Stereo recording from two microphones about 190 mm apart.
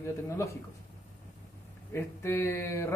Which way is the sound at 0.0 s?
15° left (ahead or behind).